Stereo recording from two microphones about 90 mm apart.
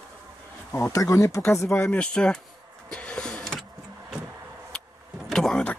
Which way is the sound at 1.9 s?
10° left (ahead or behind).